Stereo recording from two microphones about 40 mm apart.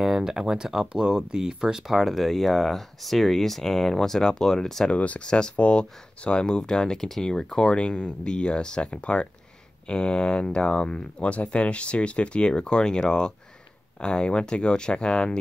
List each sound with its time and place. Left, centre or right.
0.0 s speech: centre
2.0 s speech: centre
4.8 s speech: left
5.2 s speech: left